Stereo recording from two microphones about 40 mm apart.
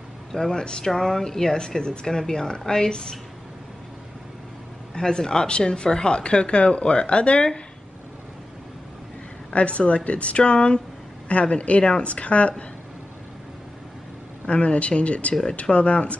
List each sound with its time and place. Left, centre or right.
0.3 s speech: centre
4.9 s speech: centre
9.5 s speech: left
14.4 s speech: left